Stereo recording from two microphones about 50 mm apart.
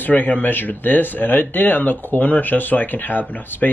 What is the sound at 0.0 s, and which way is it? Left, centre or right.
Speech, left.